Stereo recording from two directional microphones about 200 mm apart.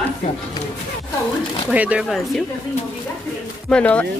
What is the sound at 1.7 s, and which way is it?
Speech, 5° right (ahead or behind).